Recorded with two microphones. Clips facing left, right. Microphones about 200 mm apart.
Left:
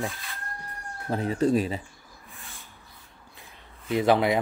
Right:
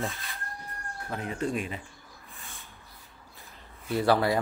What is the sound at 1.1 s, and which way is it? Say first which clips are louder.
Speech: left 8 dB; 35° left (ahead or behind).